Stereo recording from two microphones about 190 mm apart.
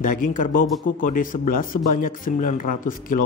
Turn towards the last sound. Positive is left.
turn(degrees=45)  # may be behind; listen again after turning